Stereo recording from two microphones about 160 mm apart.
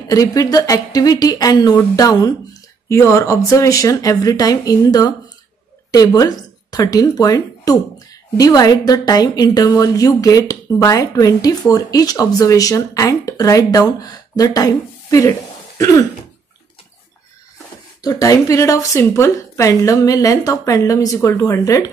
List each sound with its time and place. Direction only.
0.1 s a woman's voice: 20° left (ahead or behind)
18.0 s a woman's voice: 20° left (ahead or behind)